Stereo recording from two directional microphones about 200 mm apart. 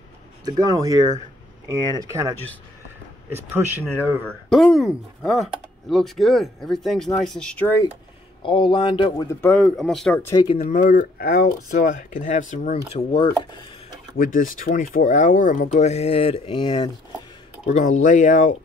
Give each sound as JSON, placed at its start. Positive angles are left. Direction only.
{"t": 0.5, "sound": "speech", "side_deg": -20}
{"t": 3.3, "sound": "speech", "side_deg": -10}
{"t": 4.2, "sound": "speech", "side_deg": 5}
{"t": 8.4, "sound": "speech", "side_deg": 25}
{"t": 10.4, "sound": "speech", "side_deg": 25}
{"t": 10.7, "sound": "speech", "side_deg": 45}
{"t": 14.1, "sound": "speech", "side_deg": 45}
{"t": 17.6, "sound": "speech", "side_deg": 35}